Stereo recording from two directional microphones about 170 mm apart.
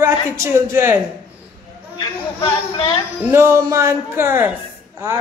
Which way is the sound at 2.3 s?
30° left (ahead or behind).